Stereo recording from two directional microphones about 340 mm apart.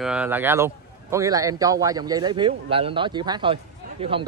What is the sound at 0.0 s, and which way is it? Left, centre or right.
A man's voice, centre.